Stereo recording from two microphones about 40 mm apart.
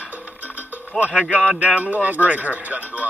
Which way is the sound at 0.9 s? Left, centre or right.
Centre.